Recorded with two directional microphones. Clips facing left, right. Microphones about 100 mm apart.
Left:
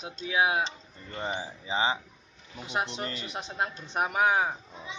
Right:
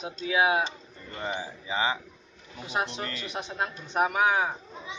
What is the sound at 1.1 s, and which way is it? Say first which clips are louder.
Speech: even; 25° left (ahead or behind).